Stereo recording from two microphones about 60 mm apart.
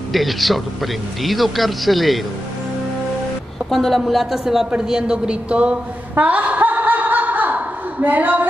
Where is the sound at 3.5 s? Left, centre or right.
Centre.